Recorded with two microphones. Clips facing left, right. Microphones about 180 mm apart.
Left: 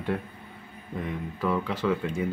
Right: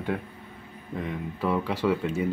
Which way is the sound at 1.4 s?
5° right (ahead or behind).